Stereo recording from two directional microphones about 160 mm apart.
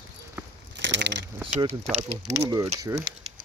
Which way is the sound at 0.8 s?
90° right.